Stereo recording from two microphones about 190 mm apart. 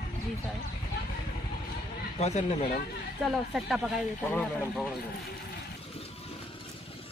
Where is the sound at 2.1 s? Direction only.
35° left (ahead or behind).